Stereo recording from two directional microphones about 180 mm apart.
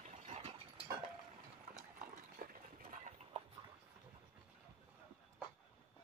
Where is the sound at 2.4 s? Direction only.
50° right (ahead or behind).